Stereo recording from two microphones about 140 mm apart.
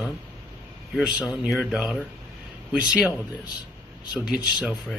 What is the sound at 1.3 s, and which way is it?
Speech, centre (ahead or behind).